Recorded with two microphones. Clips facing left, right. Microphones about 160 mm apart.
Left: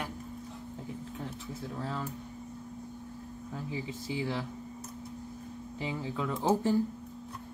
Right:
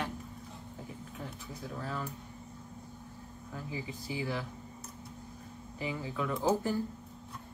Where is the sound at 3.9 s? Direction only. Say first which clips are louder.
Left 2 dB; 25° left (ahead or behind).